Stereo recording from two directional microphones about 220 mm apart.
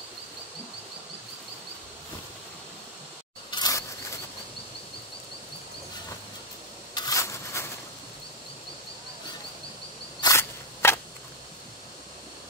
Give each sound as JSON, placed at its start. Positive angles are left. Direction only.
{"t": 3.4, "sound": "insect", "side_deg": 20}
{"t": 6.9, "sound": "a sound", "side_deg": 15}
{"t": 10.2, "sound": "insect", "side_deg": 10}